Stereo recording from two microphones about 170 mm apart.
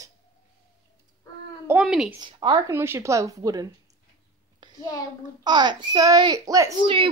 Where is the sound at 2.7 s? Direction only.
15° right (ahead or behind).